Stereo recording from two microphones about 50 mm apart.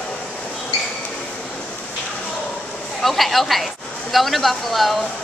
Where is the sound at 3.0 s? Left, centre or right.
Centre.